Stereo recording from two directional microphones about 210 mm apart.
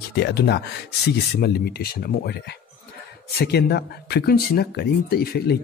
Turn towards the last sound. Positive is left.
turn(degrees=50)  # may be behind; listen again after turning